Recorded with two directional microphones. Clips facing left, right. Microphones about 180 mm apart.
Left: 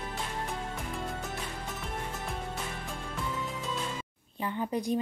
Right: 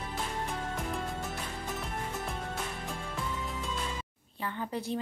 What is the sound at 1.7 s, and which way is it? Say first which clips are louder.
Music: right 1 dB; centre (ahead or behind).